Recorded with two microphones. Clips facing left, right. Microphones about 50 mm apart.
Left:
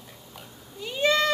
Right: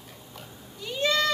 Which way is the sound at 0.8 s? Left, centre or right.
Left.